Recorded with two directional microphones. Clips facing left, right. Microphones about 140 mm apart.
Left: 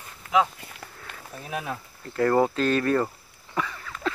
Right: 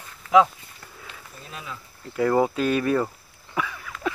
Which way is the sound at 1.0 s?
60° left (ahead or behind).